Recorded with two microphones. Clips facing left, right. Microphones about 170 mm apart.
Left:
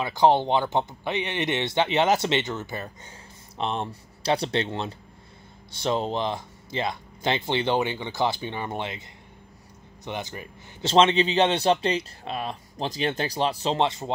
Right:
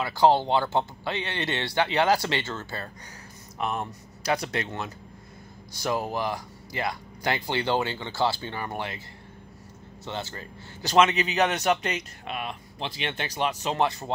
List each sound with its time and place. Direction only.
0.0 s a man's voice: 20° left (ahead or behind)
10.0 s a man's voice: 15° left (ahead or behind)